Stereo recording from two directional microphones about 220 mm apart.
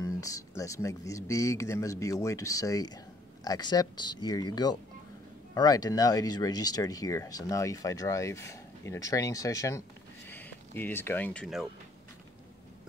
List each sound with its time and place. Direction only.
0.0 s speech: 15° left (ahead or behind)